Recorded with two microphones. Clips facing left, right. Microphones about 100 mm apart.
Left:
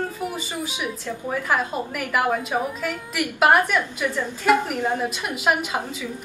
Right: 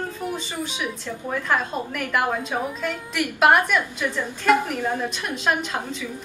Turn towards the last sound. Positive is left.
turn(degrees=10)  # may be behind; listen again after turning